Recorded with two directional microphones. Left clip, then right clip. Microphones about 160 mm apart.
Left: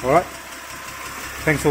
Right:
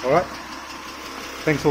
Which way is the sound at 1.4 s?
10° left (ahead or behind).